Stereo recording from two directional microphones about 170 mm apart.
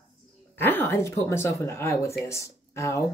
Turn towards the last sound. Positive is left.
turn(degrees=15)  # may be behind; listen again after turning